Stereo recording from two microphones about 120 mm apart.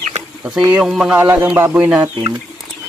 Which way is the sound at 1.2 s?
15° right (ahead or behind).